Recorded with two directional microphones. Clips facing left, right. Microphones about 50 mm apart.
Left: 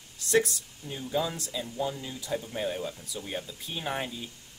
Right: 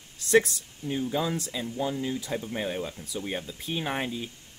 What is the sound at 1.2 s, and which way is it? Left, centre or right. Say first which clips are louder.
Speech: right 1 dB; right.